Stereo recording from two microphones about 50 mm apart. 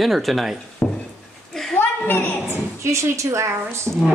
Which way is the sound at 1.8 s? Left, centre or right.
Left.